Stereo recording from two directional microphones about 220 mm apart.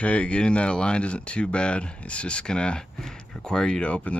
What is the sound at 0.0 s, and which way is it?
Speech, 5° left (ahead or behind).